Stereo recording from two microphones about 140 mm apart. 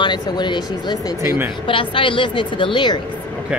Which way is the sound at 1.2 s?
15° right (ahead or behind).